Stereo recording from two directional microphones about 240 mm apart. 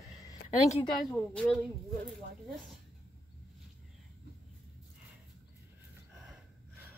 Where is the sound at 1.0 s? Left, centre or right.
Centre.